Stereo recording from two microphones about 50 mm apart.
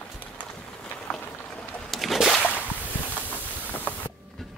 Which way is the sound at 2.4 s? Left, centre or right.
Left.